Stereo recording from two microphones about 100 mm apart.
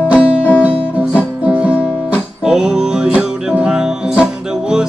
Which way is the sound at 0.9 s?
10° right (ahead or behind).